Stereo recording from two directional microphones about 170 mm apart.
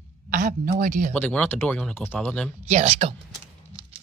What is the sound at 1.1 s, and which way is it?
Speech, 5° left (ahead or behind).